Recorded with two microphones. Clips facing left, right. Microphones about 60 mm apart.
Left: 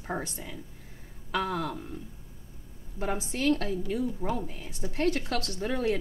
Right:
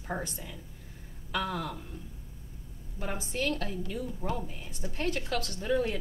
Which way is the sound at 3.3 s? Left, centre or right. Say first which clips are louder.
Left 5 dB; left.